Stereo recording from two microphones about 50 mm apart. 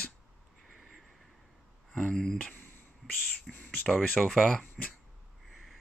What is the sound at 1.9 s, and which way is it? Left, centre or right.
Speech, centre.